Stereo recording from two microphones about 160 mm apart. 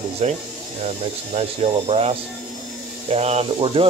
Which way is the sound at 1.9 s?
40° right (ahead or behind).